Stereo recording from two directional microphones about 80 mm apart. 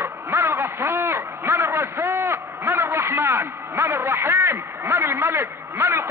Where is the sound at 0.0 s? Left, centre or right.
Right.